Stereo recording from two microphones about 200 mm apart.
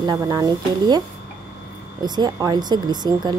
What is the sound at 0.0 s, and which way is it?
Speech, 20° right (ahead or behind).